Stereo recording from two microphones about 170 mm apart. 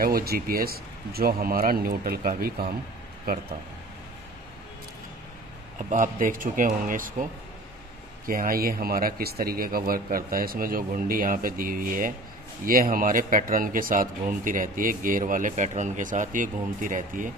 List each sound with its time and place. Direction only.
0.0 s speech: 60° right (ahead or behind)
5.8 s speech: 50° right (ahead or behind)
8.3 s speech: 55° right (ahead or behind)